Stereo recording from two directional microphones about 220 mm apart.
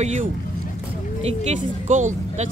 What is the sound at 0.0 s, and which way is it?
Speech, 30° right (ahead or behind).